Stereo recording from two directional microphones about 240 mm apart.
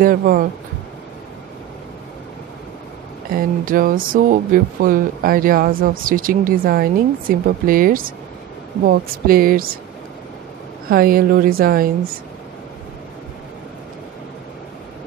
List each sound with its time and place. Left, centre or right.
0.0 s speech: right
3.3 s speech: right
10.9 s speech: right